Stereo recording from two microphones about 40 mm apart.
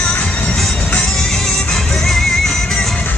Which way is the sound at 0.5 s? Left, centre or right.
Centre.